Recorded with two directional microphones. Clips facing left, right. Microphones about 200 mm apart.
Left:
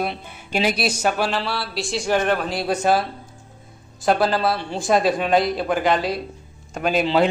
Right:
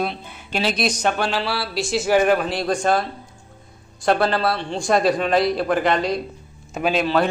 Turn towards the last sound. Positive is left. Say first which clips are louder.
# left 1 dB
turn(degrees=15)  # may be behind; listen again after turning